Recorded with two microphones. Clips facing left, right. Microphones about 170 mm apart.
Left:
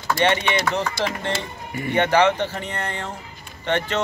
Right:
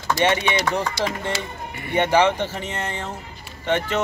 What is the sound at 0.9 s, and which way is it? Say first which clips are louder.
Speech: even; 45° left (ahead or behind).